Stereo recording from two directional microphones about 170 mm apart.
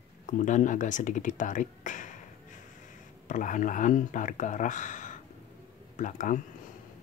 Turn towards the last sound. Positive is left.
turn(degrees=50)  # may be behind; listen again after turning